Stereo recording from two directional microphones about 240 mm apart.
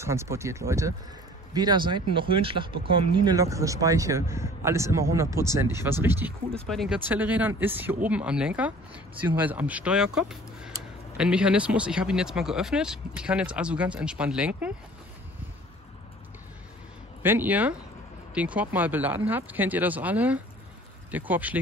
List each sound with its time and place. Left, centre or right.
0.0 s a man's voice: centre
17.2 s a man's voice: centre